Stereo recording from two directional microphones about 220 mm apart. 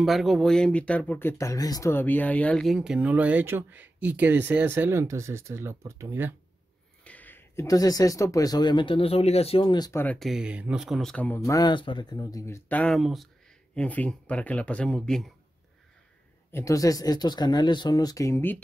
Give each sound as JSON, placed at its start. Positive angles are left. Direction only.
{"t": 0.0, "sound": "speech", "side_deg": 0}
{"t": 7.1, "sound": "speech", "side_deg": 10}
{"t": 16.5, "sound": "speech", "side_deg": 15}